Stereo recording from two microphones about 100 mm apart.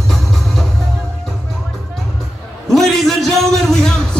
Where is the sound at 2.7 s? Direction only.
Centre (ahead or behind).